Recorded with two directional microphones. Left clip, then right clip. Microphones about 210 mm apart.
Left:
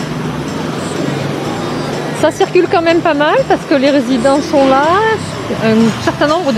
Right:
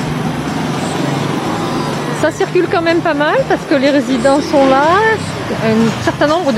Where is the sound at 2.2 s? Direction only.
20° left (ahead or behind).